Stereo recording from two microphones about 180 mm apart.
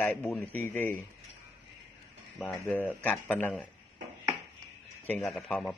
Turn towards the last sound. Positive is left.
turn(degrees=5)  # may be behind; listen again after turning